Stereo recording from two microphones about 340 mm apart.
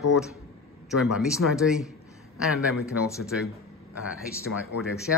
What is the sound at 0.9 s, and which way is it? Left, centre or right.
Speech, centre.